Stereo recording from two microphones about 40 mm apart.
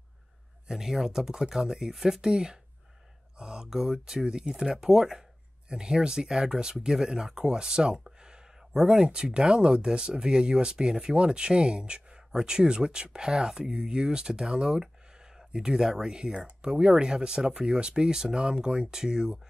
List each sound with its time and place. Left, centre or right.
0.7 s speech: centre
16.3 s speech: right